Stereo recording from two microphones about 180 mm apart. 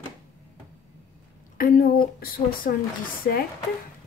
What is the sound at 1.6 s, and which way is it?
Speech, 55° left (ahead or behind).